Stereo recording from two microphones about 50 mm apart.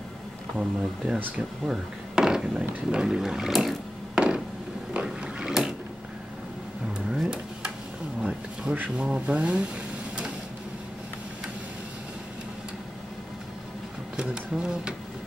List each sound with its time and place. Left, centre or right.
0.7 s speech: centre
4.1 s a sound: centre
5.0 s boat: centre
7.1 s a sound: centre
9.0 s speech: right
14.1 s speech: centre